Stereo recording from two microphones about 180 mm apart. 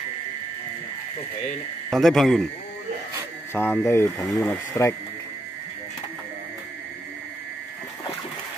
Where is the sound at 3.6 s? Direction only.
15° left (ahead or behind).